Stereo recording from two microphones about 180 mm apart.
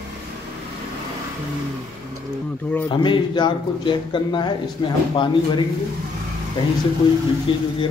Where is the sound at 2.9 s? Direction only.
25° left (ahead or behind).